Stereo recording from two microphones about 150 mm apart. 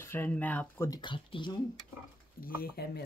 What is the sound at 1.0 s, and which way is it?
Speech, 30° left (ahead or behind).